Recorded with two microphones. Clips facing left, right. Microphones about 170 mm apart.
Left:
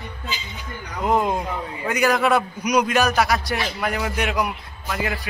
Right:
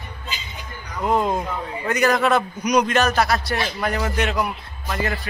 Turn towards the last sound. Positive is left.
turn(degrees=10)  # may be behind; listen again after turning